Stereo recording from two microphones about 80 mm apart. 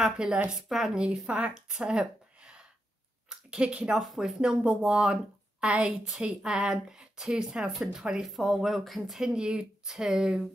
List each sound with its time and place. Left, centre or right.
0.0 s speech: centre
4.4 s speech: centre